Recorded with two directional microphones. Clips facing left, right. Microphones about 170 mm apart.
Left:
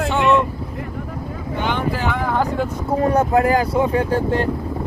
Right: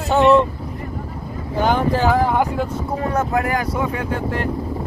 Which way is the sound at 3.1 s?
30° left (ahead or behind).